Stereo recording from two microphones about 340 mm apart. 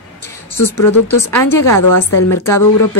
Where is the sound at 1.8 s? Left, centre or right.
Left.